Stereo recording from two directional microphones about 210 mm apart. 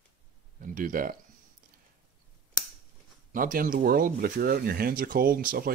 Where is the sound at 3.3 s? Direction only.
40° right (ahead or behind).